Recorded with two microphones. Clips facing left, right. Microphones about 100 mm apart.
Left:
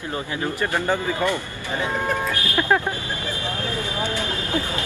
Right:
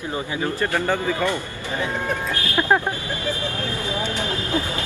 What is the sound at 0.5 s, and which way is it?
Speech, 15° left (ahead or behind).